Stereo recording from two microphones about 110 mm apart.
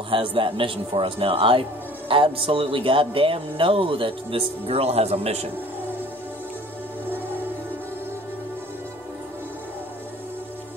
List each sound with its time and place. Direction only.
0.1 s a man's voice: 50° right (ahead or behind); by 5.5 s 70° right (ahead or behind)